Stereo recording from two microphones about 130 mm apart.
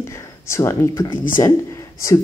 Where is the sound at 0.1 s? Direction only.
20° left (ahead or behind).